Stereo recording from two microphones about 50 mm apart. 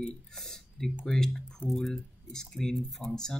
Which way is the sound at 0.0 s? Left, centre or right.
Centre.